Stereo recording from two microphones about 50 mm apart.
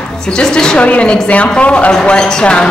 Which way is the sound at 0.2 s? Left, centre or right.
Centre.